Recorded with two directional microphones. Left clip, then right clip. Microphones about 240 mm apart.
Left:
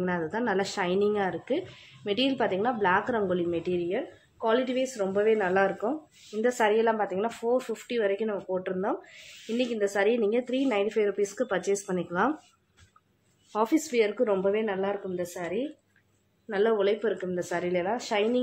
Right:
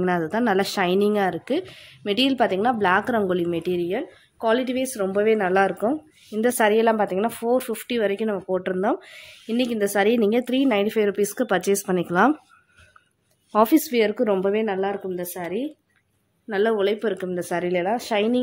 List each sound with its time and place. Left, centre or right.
0.0 s a woman's voice: right
13.5 s a woman's voice: right